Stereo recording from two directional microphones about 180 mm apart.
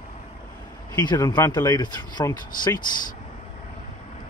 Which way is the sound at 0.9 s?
20° left (ahead or behind).